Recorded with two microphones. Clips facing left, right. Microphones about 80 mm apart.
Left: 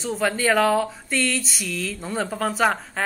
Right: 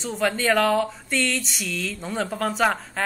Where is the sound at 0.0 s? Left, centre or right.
Centre.